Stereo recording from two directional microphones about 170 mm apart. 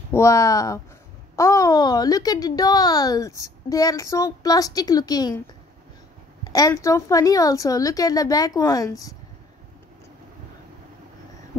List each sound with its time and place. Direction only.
0.1 s speech: 15° left (ahead or behind)
6.4 s speech: 20° left (ahead or behind)